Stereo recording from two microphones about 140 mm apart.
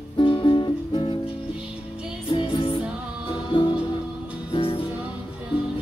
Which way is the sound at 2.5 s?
40° left (ahead or behind).